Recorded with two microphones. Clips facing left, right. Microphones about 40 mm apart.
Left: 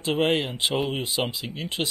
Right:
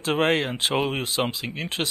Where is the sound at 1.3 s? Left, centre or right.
Right.